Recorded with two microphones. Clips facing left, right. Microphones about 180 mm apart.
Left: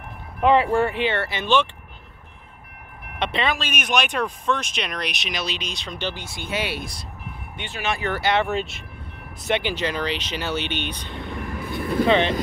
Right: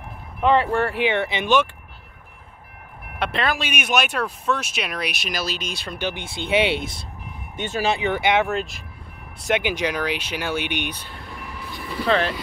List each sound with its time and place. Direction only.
0.4 s speech: 5° left (ahead or behind)
0.9 s speech: 15° right (ahead or behind)
3.2 s speech: centre (ahead or behind)
6.1 s speech: 25° right (ahead or behind)
8.5 s speech: centre (ahead or behind)
9.6 s speech: 10° right (ahead or behind)
11.3 s train: 50° left (ahead or behind)
12.1 s speech: centre (ahead or behind)